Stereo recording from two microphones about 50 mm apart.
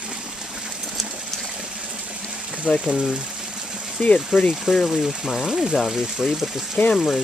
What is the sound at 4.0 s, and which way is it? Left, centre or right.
Speech, left.